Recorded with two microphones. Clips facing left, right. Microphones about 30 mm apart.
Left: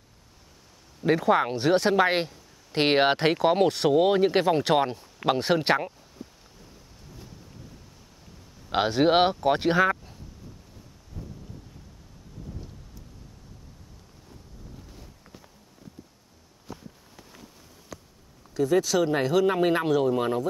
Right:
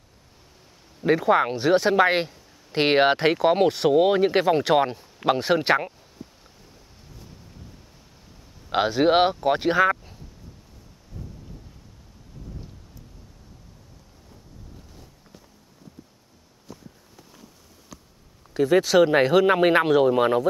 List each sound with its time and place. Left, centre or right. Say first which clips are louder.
1.0 s speech: right 2 dB; centre
8.6 s speech: right 2 dB; centre
17.9 s a sound: left 3 dB; centre
18.5 s speech: right 4 dB; right